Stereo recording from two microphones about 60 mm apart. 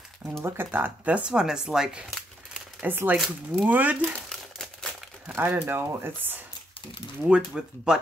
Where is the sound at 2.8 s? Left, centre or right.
Right.